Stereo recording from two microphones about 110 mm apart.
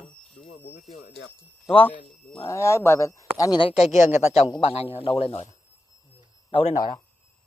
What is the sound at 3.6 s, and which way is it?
Speech, 70° left (ahead or behind).